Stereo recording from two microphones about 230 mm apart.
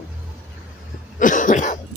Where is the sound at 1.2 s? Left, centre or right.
Left.